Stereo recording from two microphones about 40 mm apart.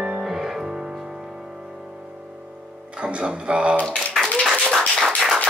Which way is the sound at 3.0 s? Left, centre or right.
Right.